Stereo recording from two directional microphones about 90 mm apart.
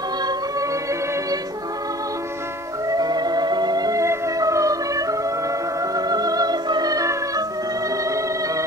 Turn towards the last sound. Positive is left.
turn(degrees=-45)  # may be behind; listen again after turning